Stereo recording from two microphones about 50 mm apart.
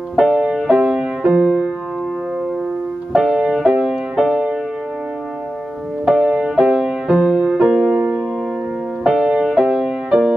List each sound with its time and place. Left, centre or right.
0.2 s music: centre
0.7 s music: centre
3.1 s music: centre
6.0 s music: centre
6.4 s music: centre
9.0 s music: centre